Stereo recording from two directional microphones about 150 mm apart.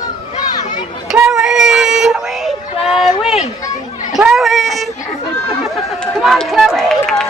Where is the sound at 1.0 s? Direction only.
5° right (ahead or behind).